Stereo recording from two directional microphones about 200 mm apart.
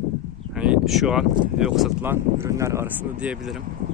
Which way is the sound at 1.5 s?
Centre (ahead or behind).